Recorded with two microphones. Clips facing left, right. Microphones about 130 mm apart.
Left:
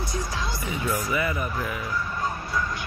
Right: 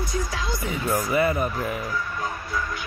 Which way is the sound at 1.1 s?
35° right (ahead or behind).